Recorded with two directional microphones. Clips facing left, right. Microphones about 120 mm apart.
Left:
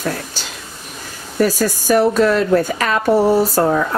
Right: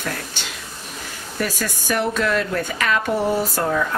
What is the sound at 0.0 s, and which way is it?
Speech, 35° left (ahead or behind).